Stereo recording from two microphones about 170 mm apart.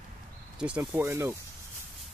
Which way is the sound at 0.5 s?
5° right (ahead or behind).